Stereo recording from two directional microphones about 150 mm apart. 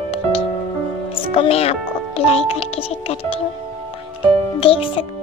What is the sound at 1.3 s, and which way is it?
Speech, 40° left (ahead or behind).